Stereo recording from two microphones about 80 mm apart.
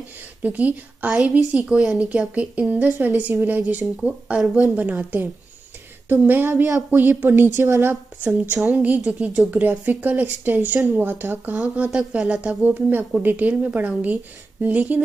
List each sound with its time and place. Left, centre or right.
0.4 s a woman's voice: centre
9.5 s a woman's voice: right